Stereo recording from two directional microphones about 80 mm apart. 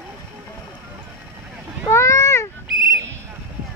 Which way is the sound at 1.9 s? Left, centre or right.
Left.